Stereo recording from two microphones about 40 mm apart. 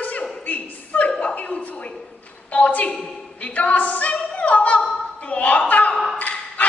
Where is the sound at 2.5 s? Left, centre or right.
Left.